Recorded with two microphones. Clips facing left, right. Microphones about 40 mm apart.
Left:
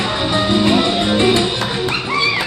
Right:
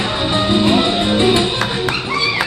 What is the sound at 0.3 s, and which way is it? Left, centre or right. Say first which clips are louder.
Music: even; centre.